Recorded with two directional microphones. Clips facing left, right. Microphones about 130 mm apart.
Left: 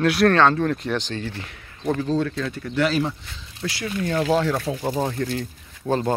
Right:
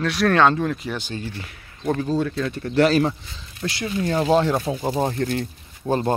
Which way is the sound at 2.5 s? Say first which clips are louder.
Right 8 dB; 35° right (ahead or behind).